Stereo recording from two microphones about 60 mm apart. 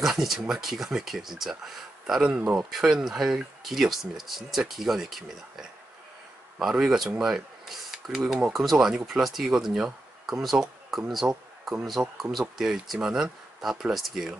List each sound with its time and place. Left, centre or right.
0.0 s speech: centre
2.2 s speech: centre
2.7 s speech: centre